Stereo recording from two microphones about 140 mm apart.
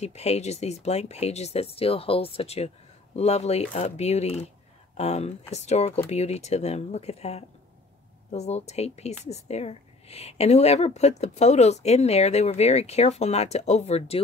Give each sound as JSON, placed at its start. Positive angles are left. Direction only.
{"t": 0.0, "sound": "speech", "side_deg": 50}